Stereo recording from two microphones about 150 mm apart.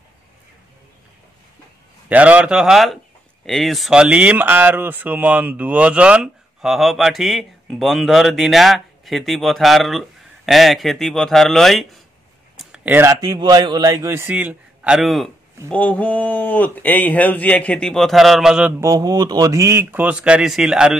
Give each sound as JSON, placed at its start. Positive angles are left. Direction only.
{"t": 2.0, "sound": "speech", "side_deg": -10}
{"t": 18.7, "sound": "speech", "side_deg": -20}